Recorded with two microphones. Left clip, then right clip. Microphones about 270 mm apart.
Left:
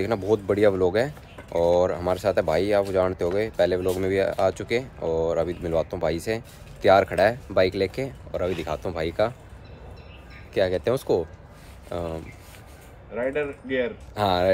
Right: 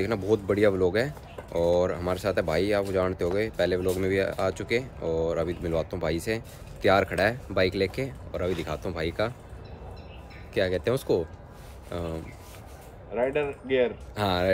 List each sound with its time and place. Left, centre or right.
0.0 s speech: centre
10.5 s speech: centre
13.1 s speech: right
14.1 s speech: centre